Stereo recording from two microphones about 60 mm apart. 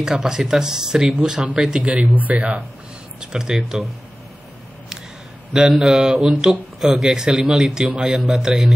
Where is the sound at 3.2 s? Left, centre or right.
Centre.